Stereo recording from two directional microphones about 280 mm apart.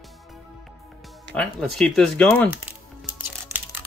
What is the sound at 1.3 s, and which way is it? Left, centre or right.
Speech, centre.